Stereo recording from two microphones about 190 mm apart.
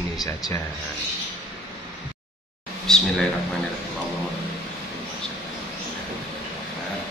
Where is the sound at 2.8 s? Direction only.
5° left (ahead or behind).